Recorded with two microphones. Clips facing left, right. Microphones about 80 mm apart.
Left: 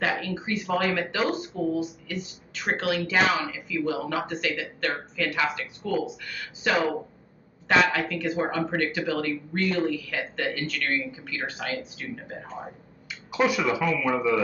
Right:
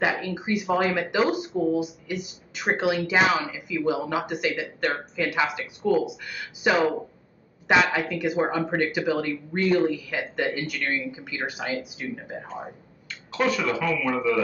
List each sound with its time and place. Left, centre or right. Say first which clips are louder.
0.0 s speech: right 2 dB; centre
13.1 s speech: even; centre